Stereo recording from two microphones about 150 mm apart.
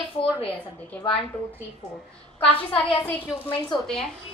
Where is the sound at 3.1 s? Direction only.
15° left (ahead or behind).